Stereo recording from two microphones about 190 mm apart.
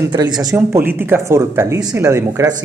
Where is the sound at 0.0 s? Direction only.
20° right (ahead or behind).